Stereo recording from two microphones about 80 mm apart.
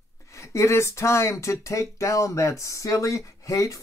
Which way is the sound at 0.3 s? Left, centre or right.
Left.